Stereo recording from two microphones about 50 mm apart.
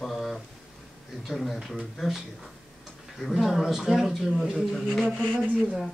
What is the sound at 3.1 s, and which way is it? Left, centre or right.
Speech, centre.